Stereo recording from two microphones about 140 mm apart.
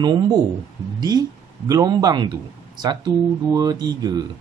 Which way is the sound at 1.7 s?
25° right (ahead or behind).